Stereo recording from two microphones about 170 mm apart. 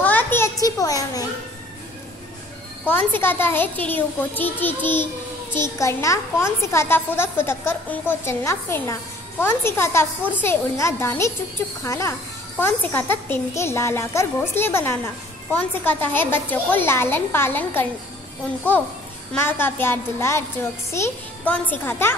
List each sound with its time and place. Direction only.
0.0 s children playing: 10° left (ahead or behind)
2.9 s a child's voice: 10° left (ahead or behind)
19.3 s a child's voice: 15° left (ahead or behind)